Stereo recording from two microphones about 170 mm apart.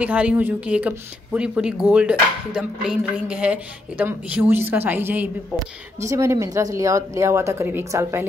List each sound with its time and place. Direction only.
0.0 s speech: 10° right (ahead or behind)